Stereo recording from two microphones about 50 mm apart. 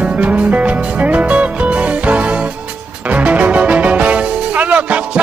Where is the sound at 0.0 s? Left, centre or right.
Right.